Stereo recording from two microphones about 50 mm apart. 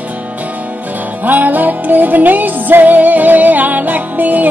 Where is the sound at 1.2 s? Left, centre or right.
Right.